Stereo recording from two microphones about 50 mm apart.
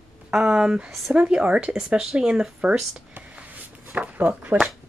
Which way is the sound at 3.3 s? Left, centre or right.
Right.